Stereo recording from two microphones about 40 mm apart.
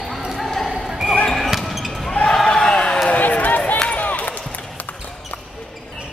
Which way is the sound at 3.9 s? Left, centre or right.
Left.